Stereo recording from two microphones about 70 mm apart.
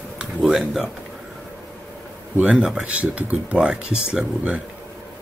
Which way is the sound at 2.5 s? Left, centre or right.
Centre.